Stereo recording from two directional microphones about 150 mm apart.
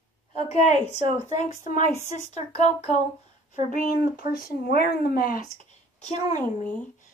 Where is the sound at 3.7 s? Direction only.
65° left (ahead or behind); by 5.4 s 85° left.